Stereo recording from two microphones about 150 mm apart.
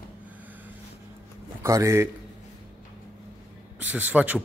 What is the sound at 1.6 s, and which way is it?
Speech, 20° right (ahead or behind).